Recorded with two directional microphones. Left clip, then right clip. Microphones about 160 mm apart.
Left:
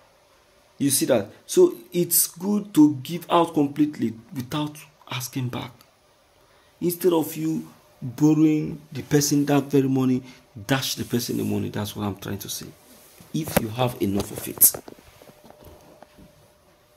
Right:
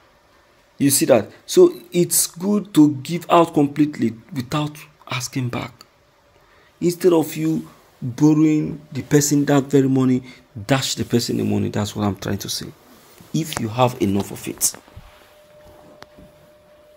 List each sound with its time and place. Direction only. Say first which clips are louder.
0.7 s speech: right 6 dB; 30° right (ahead or behind)
6.8 s speech: right 5 dB; 25° right (ahead or behind)
8.2 s speech: right 3 dB; 15° right (ahead or behind)
9.2 s speech: right 4 dB; 20° right (ahead or behind); by 14.1 s 45° right (ahead or behind)